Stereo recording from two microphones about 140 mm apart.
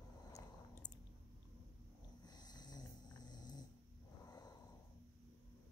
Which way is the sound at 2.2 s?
30° left (ahead or behind).